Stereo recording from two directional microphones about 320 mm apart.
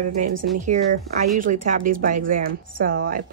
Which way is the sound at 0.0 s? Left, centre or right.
Right.